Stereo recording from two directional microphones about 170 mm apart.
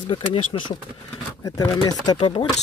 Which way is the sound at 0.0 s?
30° left (ahead or behind).